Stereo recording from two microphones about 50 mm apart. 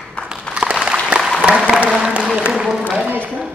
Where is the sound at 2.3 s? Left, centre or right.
Centre.